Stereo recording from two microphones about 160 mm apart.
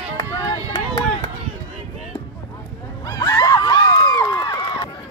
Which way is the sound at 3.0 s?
25° left (ahead or behind).